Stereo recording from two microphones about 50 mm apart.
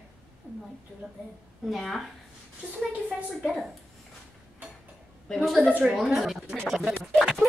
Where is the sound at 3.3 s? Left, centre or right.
Centre.